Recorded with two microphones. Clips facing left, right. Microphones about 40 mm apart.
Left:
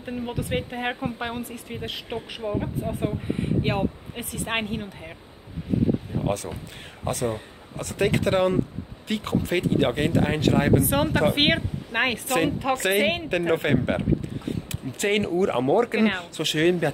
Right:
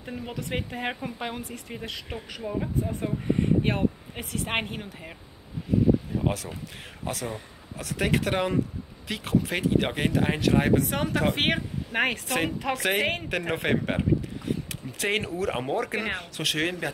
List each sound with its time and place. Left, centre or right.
0.0 s speech: centre
6.2 s speech: centre
7.7 s speech: centre
11.0 s speech: centre
11.5 s speech: left
12.7 s speech: centre